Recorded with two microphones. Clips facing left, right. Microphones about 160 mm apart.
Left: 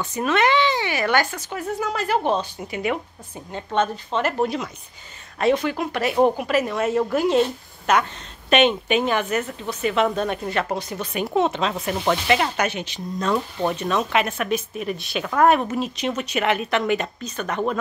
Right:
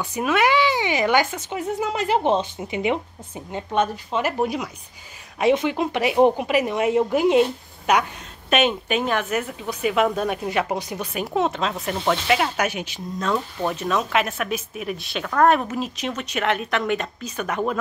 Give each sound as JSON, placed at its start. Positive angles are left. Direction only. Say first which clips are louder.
{"t": 0.0, "sound": "speech", "louder": "even", "side_deg": -10}
{"t": 11.1, "sound": "speech", "louder": "left 2 dB", "side_deg": 0}
{"t": 17.2, "sound": "speech", "louder": "even", "side_deg": -10}